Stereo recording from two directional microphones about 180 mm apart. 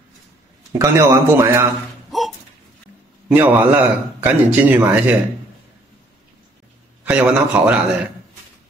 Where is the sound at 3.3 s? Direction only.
10° right (ahead or behind).